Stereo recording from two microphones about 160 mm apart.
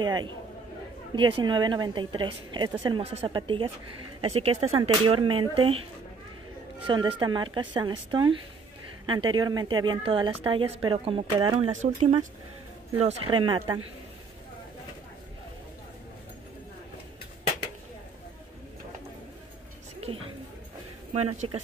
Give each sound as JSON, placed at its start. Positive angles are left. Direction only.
{"t": 0.0, "sound": "a woman's voice", "side_deg": -25}
{"t": 6.9, "sound": "a woman's voice", "side_deg": -30}
{"t": 11.8, "sound": "speech", "side_deg": -45}
{"t": 13.0, "sound": "a woman's voice", "side_deg": -30}
{"t": 20.0, "sound": "a sound", "side_deg": -35}
{"t": 21.1, "sound": "a woman's voice", "side_deg": -40}